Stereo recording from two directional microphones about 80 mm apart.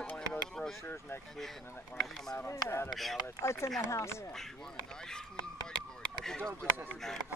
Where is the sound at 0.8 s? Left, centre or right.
Left.